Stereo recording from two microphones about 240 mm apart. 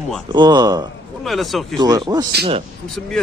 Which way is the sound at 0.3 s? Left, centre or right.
Centre.